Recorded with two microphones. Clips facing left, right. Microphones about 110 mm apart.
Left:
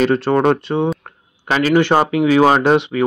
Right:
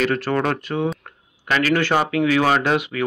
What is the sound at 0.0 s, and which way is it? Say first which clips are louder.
Speech: left 6 dB; 25° left (ahead or behind).